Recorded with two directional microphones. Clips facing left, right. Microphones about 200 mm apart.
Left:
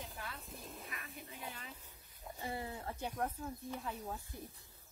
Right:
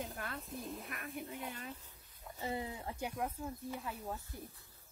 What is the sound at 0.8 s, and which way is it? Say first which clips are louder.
Speech: right 6 dB; 55° right (ahead or behind).